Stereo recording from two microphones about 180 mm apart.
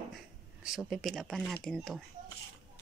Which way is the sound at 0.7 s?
Centre (ahead or behind).